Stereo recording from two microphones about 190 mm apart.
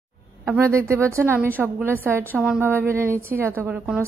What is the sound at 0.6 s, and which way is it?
A woman's voice, 15° right (ahead or behind).